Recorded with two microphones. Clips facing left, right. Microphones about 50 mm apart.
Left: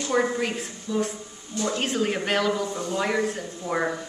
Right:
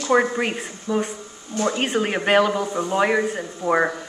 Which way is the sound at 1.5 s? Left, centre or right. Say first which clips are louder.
Right 4 dB; right.